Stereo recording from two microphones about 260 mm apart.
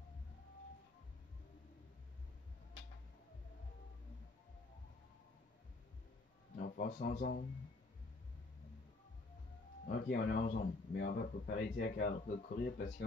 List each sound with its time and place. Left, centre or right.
6.7 s speech: left
9.8 s speech: left